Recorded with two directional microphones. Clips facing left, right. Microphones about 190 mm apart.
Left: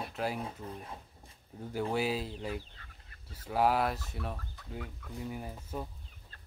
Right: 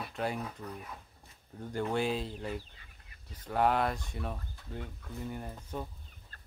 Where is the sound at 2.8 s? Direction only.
15° right (ahead or behind).